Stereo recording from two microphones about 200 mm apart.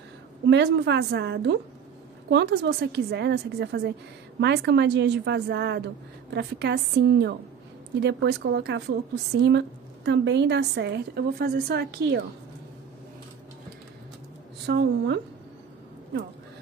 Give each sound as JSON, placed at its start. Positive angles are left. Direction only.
{"t": 0.5, "sound": "a woman's voice", "side_deg": -60}
{"t": 14.7, "sound": "a woman's voice", "side_deg": -55}